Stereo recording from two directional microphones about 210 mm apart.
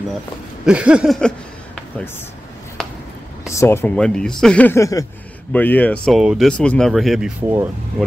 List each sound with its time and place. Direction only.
0.7 s speech: 5° right (ahead or behind)
2.8 s a sound: 5° left (ahead or behind)
3.4 s speech: 15° left (ahead or behind); by 7.5 s 5° right (ahead or behind)